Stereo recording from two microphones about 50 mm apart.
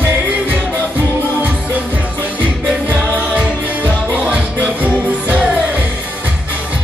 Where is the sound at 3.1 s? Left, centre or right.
Right.